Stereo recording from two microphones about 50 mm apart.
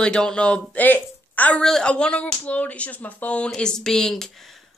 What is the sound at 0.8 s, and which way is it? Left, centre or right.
Speech, left.